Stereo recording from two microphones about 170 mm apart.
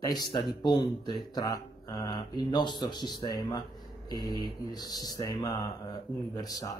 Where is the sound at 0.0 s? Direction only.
25° left (ahead or behind).